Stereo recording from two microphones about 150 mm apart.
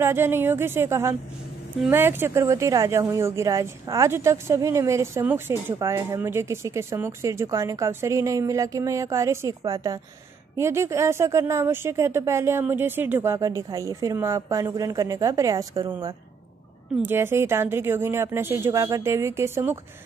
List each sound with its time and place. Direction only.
0.0 s speech: 15° right (ahead or behind)
16.9 s speech: 15° right (ahead or behind)